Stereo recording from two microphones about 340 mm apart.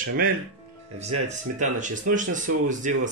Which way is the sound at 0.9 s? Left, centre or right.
Centre.